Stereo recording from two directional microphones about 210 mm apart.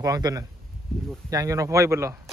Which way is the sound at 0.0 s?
15° right (ahead or behind).